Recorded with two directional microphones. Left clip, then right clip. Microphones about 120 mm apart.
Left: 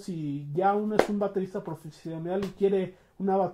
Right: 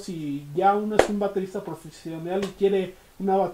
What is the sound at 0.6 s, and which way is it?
Speech, 30° right (ahead or behind).